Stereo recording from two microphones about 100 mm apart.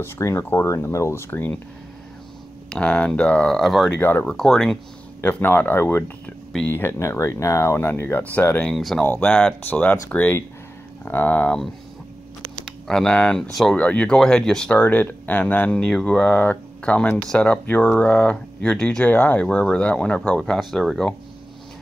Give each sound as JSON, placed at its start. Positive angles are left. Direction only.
{"t": 0.0, "sound": "speech", "side_deg": 25}
{"t": 2.7, "sound": "speech", "side_deg": 10}
{"t": 4.0, "sound": "speech", "side_deg": 20}
{"t": 4.3, "sound": "speech", "side_deg": 5}
{"t": 5.2, "sound": "speech", "side_deg": 20}
{"t": 8.6, "sound": "speech", "side_deg": 5}
{"t": 9.0, "sound": "speech", "side_deg": 15}
{"t": 12.6, "sound": "speech", "side_deg": 5}